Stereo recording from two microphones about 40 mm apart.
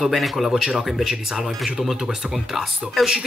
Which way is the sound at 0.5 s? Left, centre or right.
Centre.